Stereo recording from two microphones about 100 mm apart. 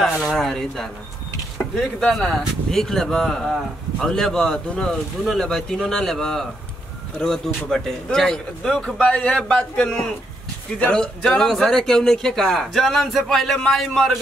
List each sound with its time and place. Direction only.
0.0 s a man's voice: 5° right (ahead or behind)